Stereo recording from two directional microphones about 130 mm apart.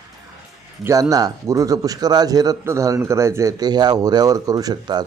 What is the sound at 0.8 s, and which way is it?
Speech, 25° right (ahead or behind).